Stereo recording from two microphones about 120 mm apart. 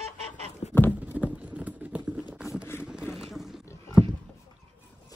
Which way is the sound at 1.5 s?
10° right (ahead or behind).